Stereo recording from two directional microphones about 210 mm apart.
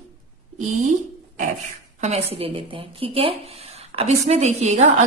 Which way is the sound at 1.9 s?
30° right (ahead or behind).